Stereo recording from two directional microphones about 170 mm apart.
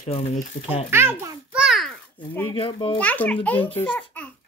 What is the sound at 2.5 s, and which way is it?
Speech, 30° left (ahead or behind).